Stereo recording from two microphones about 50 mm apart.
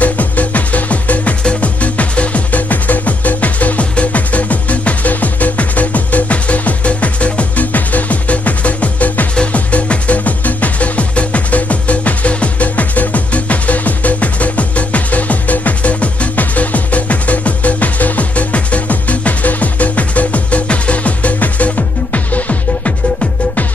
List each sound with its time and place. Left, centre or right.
0.0 s music: left